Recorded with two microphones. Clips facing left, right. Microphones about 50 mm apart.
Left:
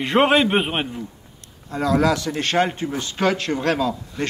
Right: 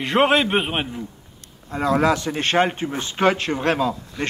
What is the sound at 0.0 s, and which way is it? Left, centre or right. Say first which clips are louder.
A man's voice: left 1 dB; centre.